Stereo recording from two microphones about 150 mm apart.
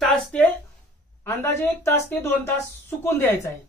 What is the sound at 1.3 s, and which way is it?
Speech, 15° left (ahead or behind).